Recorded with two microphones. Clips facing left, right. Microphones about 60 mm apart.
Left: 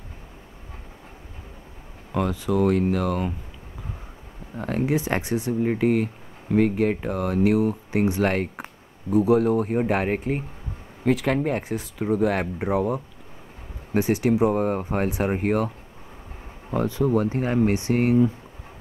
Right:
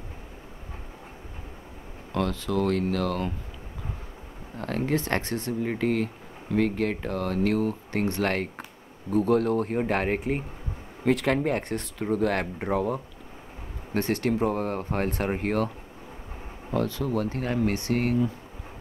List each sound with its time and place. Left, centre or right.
2.1 s speech: centre
4.6 s speech: centre
16.7 s speech: centre